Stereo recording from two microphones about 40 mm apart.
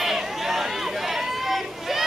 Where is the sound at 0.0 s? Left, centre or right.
Centre.